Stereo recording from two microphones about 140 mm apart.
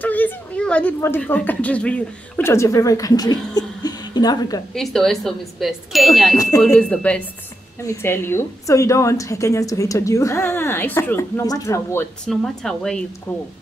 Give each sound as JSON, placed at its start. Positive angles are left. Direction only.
{"t": 0.0, "sound": "speech", "side_deg": 10}
{"t": 4.7, "sound": "speech", "side_deg": 5}
{"t": 6.3, "sound": "a woman's voice", "side_deg": 25}
{"t": 6.8, "sound": "speech", "side_deg": 5}
{"t": 7.8, "sound": "a woman's voice", "side_deg": 20}
{"t": 12.3, "sound": "speech", "side_deg": 5}